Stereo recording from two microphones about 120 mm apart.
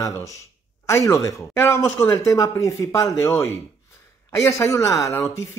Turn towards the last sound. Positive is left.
turn(degrees=25)  # may be behind; listen again after turning